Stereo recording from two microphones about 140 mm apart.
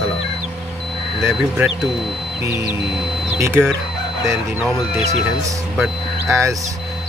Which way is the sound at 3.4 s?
20° right (ahead or behind).